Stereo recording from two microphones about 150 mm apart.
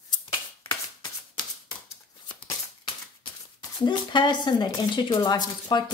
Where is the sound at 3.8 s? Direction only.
30° left (ahead or behind).